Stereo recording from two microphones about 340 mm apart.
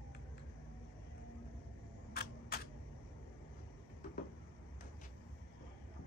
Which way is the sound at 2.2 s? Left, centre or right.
Left.